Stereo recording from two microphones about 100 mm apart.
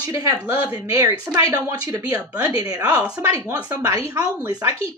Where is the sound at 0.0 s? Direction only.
35° right (ahead or behind).